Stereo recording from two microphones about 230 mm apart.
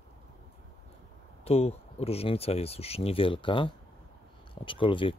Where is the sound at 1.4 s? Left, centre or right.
Left.